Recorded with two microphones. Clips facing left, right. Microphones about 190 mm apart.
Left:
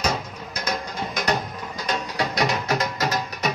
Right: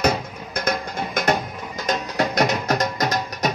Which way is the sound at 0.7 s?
55° right (ahead or behind).